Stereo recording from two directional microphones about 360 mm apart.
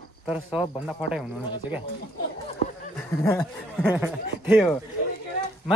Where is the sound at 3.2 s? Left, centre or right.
Centre.